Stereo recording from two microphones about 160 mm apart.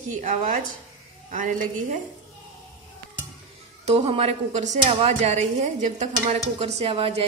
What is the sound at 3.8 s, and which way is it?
A woman's voice, 40° right (ahead or behind).